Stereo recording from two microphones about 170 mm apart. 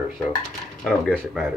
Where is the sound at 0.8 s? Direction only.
5° left (ahead or behind).